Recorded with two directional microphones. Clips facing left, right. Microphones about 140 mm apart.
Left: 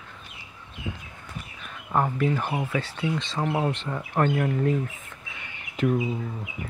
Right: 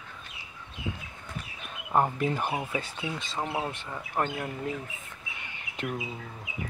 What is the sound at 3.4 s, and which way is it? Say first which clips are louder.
Speech: left 7 dB; 25° left (ahead or behind).